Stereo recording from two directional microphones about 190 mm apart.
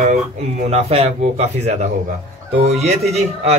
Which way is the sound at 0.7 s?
35° right (ahead or behind).